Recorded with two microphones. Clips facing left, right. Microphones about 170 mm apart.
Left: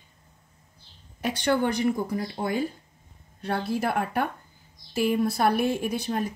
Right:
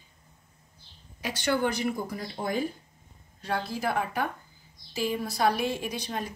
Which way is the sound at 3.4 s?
60° left (ahead or behind).